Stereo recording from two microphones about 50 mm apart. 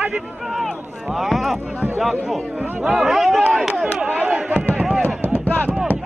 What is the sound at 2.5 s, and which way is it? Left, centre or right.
Speech, right.